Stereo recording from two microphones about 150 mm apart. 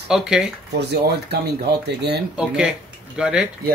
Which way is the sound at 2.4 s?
5° right (ahead or behind).